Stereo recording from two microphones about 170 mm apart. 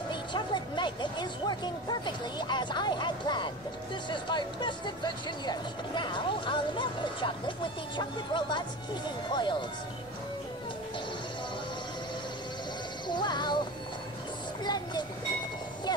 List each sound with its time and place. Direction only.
0.1 s speech: 30° left (ahead or behind)
13.1 s speech: 25° left (ahead or behind)
14.6 s a sound: 25° left (ahead or behind)